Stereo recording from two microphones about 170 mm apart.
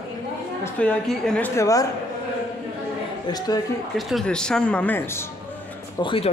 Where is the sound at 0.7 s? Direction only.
10° left (ahead or behind).